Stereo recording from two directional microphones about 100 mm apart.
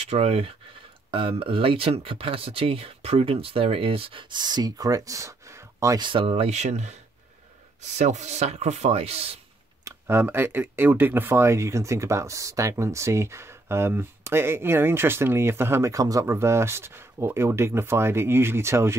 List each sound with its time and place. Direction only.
0.0 s speech: 90° right
1.1 s speech: 60° right (ahead or behind); by 5.9 s 30° right (ahead or behind)
5.9 s speech: 55° right (ahead or behind); by 6.8 s 85° right
8.3 s speech: 90° right
9.8 s speech: 25° right (ahead or behind)